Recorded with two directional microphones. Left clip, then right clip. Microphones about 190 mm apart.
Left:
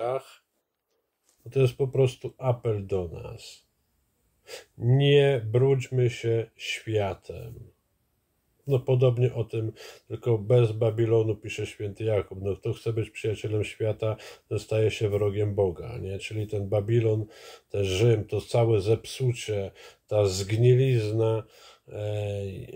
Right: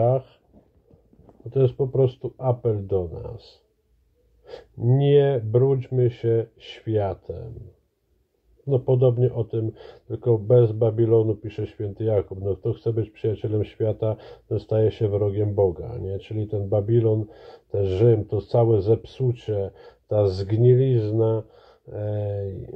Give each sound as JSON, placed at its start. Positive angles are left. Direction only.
{"t": 1.8, "sound": "speech", "side_deg": 20}
{"t": 4.9, "sound": "speech", "side_deg": 15}
{"t": 8.6, "sound": "speech", "side_deg": 15}